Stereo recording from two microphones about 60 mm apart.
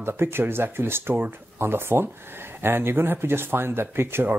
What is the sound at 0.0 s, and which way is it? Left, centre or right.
Speech, right.